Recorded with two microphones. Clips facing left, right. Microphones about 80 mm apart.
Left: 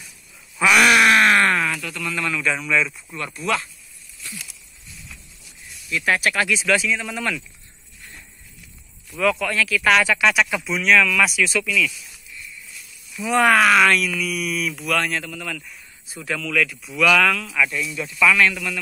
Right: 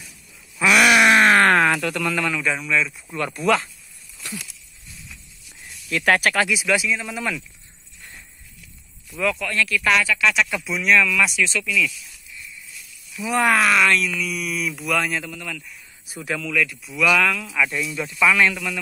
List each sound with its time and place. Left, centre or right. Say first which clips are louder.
0.6 s a sound: left 1 dB; centre
1.1 s groan: right 1 dB; right
1.6 s a sound: right 6 dB; right
2.0 s speech: even; right
2.4 s speech: left 1 dB; centre
3.3 s speech: right 4 dB; right
5.9 s speech: right 2 dB; right
6.4 s speech: left 1 dB; centre
9.1 s speech: left 3 dB; centre
9.9 s speech: left 2 dB; centre
10.3 s speech: left 2 dB; centre
13.2 s speech: left 3 dB; centre
17.6 s a man's voice: right 1 dB; right